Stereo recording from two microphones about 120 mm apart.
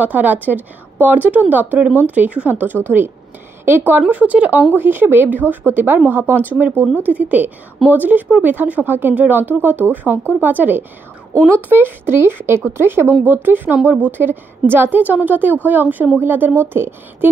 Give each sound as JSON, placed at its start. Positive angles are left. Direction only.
{"t": 0.0, "sound": "speech", "side_deg": -15}
{"t": 11.3, "sound": "speech", "side_deg": 15}
{"t": 11.7, "sound": "speech", "side_deg": -20}